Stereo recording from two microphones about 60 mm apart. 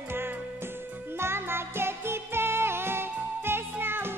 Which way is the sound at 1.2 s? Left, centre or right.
Right.